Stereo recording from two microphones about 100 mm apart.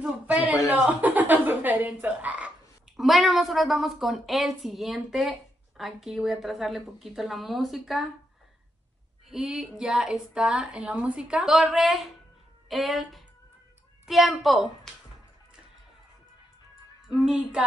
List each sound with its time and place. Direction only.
0.0 s speech: 15° right (ahead or behind)
1.0 s a sound: 15° right (ahead or behind)
2.0 s croak: 15° right (ahead or behind)
3.0 s a woman's voice: centre (ahead or behind)
9.3 s a woman's voice: 5° right (ahead or behind)
17.1 s a woman's voice: 5° right (ahead or behind)